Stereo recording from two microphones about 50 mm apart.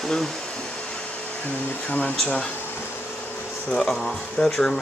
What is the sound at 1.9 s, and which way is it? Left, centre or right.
Speech, left.